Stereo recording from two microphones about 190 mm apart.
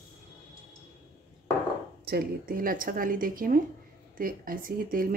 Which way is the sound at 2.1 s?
50° right (ahead or behind).